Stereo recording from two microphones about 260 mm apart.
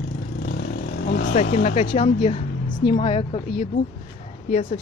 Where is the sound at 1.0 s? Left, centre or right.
Left.